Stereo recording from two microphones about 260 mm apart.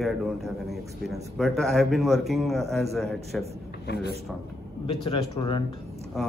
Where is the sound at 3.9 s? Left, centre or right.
Left.